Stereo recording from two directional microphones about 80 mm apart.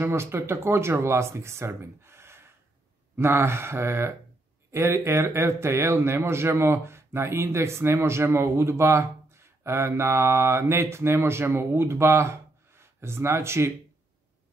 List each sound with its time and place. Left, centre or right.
0.0 s a man's voice: right